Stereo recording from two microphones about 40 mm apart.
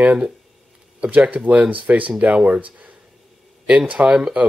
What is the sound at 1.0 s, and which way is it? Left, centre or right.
Speech, right.